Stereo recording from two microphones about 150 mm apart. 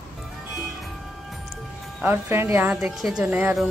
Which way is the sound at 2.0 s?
15° right (ahead or behind).